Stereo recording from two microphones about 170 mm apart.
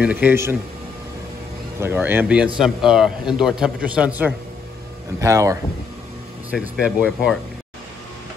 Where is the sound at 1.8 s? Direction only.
15° right (ahead or behind).